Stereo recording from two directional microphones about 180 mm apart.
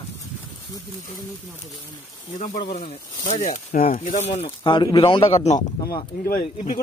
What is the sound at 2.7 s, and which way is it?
Speech, 40° left (ahead or behind).